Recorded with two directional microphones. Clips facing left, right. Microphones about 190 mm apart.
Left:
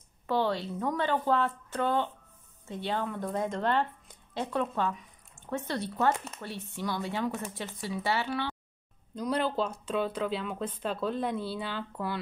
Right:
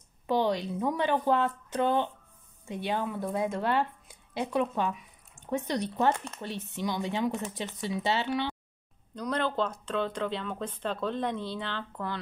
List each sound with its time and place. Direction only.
0.3 s speech: 15° right (ahead or behind)
6.1 s speech: 5° left (ahead or behind)
6.4 s speech: 20° right (ahead or behind)
9.1 s speech: 10° left (ahead or behind)